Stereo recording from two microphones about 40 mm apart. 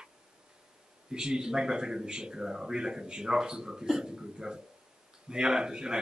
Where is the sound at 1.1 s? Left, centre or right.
Centre.